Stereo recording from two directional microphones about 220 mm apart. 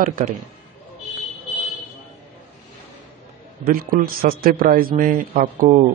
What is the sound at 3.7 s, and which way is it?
A man's voice, 40° right (ahead or behind).